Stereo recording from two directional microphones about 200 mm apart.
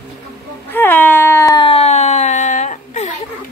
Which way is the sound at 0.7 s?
10° left (ahead or behind).